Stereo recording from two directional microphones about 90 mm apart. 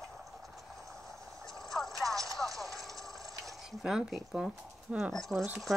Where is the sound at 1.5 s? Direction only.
5° left (ahead or behind).